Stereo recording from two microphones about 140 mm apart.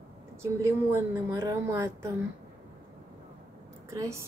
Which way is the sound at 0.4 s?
20° right (ahead or behind).